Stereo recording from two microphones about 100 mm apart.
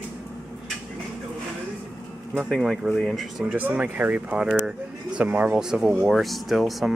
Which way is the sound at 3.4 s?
15° right (ahead or behind).